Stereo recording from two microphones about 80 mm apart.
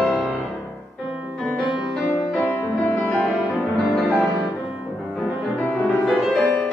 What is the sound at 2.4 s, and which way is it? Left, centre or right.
Music, left.